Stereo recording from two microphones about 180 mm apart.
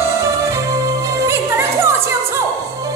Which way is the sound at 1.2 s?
15° right (ahead or behind).